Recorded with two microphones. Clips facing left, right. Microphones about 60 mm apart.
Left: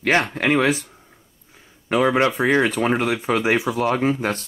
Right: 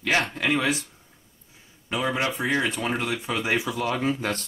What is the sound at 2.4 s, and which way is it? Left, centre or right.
Speech, left.